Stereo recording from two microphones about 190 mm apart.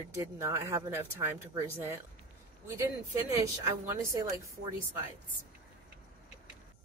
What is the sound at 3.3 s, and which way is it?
Speech, 15° right (ahead or behind).